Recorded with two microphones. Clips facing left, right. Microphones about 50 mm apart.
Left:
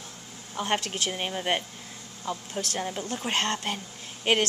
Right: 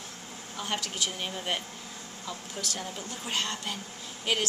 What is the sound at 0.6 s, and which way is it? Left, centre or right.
A woman's voice, left.